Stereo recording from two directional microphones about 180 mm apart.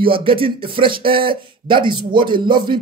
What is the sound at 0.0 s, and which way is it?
Speech, 30° right (ahead or behind).